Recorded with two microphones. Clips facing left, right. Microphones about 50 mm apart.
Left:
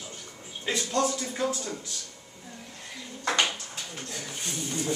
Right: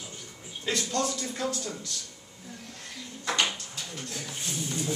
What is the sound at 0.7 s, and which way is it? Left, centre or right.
A man's voice, centre.